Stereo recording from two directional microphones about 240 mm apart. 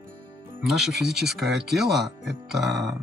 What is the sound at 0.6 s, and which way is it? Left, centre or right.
Speech, centre.